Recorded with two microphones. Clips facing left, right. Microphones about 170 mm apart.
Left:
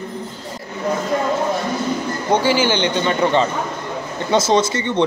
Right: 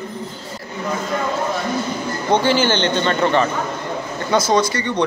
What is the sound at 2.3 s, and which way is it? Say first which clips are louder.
A man's voice: even; 10° left (ahead or behind).